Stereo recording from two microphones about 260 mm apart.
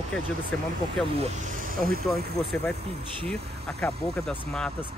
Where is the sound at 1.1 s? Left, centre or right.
Right.